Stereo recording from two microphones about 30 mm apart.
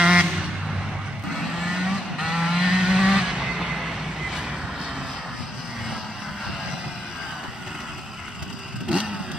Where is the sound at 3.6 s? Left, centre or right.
Centre.